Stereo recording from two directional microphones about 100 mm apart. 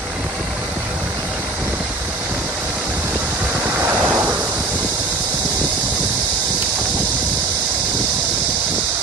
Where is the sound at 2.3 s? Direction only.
15° right (ahead or behind).